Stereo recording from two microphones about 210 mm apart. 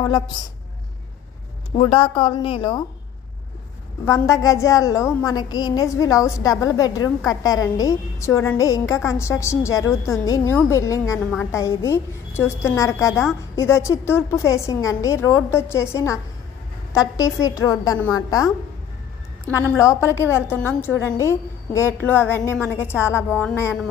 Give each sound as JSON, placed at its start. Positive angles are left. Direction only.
{"t": 1.8, "sound": "a woman's voice", "side_deg": 25}
{"t": 4.0, "sound": "a woman's voice", "side_deg": 15}
{"t": 19.5, "sound": "a woman's voice", "side_deg": 10}